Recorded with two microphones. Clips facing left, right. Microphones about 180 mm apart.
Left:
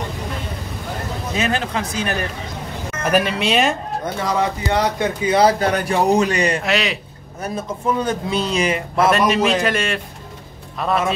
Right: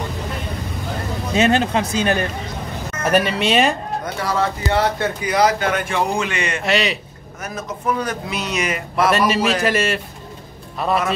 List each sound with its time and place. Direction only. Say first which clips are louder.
1.3 s speech: right 6 dB; 25° right (ahead or behind)
3.0 s a man's voice: right 1 dB; centre (ahead or behind)
4.0 s speech: left 1 dB; 20° left (ahead or behind)
5.3 s speech: left 2 dB; 30° left (ahead or behind)
6.6 s a man's voice: right 1 dB; centre (ahead or behind)
7.4 s speech: left 2 dB; 30° left (ahead or behind)
9.1 s a man's voice: left 1 dB; centre (ahead or behind)